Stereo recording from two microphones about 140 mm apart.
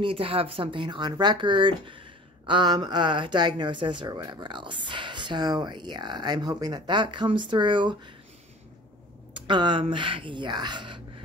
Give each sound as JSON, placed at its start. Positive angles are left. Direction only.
{"t": 0.0, "sound": "speech", "side_deg": -40}
{"t": 9.3, "sound": "speech", "side_deg": -35}